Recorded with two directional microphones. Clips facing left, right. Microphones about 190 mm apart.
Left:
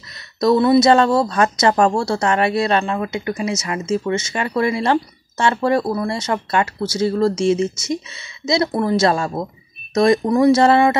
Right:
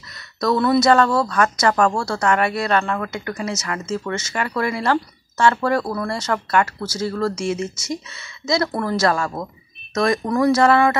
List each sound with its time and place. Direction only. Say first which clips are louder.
0.4 s speech: left 4 dB; 20° left (ahead or behind)